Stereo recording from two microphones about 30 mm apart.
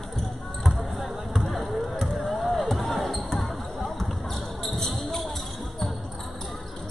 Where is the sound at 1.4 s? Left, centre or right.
Centre.